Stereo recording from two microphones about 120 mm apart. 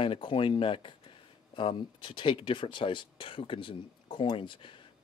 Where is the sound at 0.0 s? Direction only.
45° left (ahead or behind).